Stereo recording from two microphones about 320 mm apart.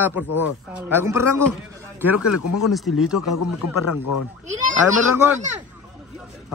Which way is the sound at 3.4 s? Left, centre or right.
Left.